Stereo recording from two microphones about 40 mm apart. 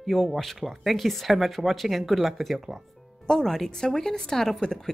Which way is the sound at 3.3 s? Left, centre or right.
Centre.